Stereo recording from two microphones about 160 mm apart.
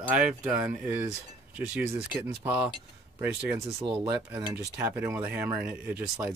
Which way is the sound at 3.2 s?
5° right (ahead or behind).